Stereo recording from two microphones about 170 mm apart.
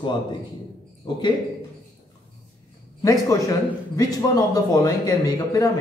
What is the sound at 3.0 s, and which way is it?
A man's voice, 20° left (ahead or behind).